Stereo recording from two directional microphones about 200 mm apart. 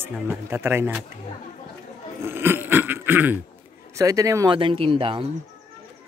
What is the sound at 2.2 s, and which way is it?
Dog, 10° right (ahead or behind).